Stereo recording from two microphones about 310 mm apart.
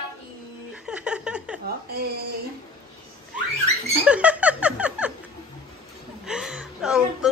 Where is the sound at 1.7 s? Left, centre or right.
Right.